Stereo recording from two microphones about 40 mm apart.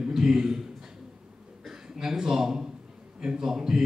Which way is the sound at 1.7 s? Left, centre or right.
Centre.